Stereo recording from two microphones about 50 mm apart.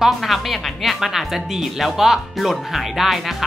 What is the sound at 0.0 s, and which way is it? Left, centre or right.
Speech, centre.